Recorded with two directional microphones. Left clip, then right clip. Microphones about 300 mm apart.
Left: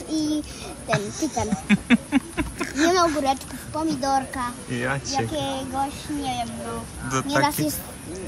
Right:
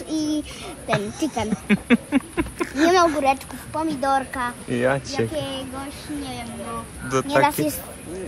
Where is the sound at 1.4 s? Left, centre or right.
Centre.